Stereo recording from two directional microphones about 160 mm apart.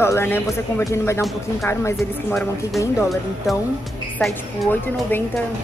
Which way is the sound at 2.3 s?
5° left (ahead or behind).